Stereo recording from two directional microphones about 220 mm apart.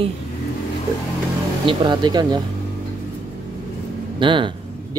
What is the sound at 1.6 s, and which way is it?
Speech, 20° right (ahead or behind).